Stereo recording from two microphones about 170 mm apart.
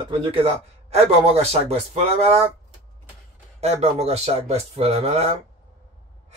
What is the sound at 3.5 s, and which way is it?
Speech, 40° right (ahead or behind).